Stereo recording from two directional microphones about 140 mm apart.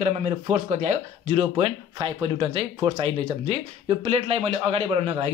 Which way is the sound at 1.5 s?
40° right (ahead or behind).